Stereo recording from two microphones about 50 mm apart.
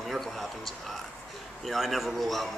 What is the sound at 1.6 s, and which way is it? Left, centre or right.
Speech, centre.